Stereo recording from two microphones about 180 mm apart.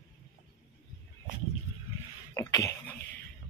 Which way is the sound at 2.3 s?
20° left (ahead or behind).